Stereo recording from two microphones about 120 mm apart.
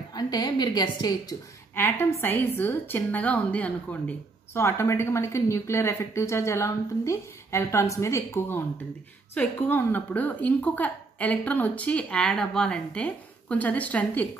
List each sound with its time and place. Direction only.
0.1 s a woman's voice: 35° left (ahead or behind)
1.8 s a woman's voice: 20° left (ahead or behind)